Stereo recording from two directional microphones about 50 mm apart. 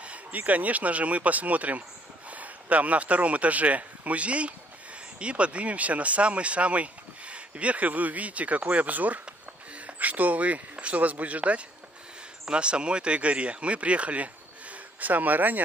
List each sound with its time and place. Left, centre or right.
0.0 s speech: right